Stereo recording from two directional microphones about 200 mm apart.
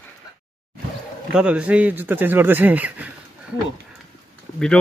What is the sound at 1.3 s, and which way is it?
Speech, 5° right (ahead or behind).